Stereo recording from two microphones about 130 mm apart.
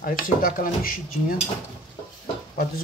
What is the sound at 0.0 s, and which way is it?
Speech, 90° left.